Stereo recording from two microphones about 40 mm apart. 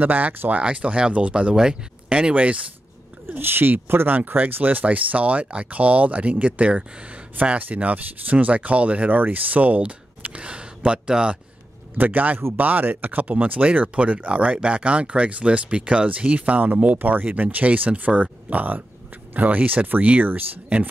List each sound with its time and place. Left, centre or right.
0.0 s speech: right
0.7 s speech: right
1.5 s speech: centre
3.3 s speech: right
4.4 s speech: right
12.0 s speech: right